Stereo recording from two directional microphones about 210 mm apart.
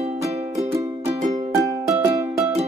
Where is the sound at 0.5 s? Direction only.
15° right (ahead or behind).